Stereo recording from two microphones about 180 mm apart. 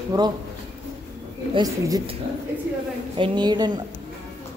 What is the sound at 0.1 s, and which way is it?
Speech, 20° right (ahead or behind).